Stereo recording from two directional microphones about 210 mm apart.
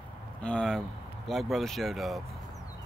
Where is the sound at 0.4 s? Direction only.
5° left (ahead or behind).